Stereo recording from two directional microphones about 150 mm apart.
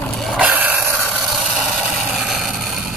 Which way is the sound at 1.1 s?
Centre (ahead or behind).